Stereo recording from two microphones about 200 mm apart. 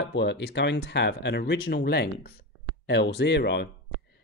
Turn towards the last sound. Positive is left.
turn(degrees=60)  # may be behind; listen again after turning